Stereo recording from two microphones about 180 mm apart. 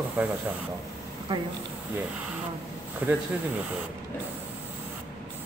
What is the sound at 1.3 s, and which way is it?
Speech, 25° right (ahead or behind).